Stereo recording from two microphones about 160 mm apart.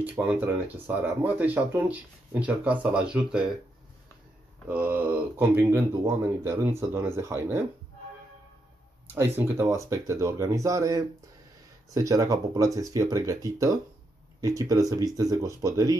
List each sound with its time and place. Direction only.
0.0 s speech: 10° right (ahead or behind)
4.6 s speech: 10° right (ahead or behind)
9.1 s speech: 15° right (ahead or behind)